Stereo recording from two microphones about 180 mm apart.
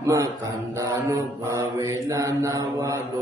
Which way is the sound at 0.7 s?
15° right (ahead or behind).